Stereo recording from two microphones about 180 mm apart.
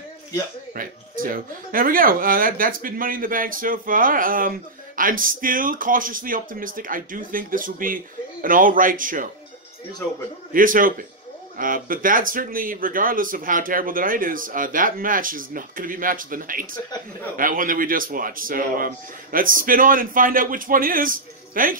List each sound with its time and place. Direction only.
0.7 s speech: 50° right (ahead or behind)
10.5 s speech: 50° right (ahead or behind)